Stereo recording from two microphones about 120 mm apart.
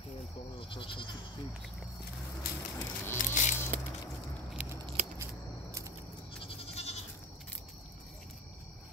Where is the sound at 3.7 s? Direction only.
90° right.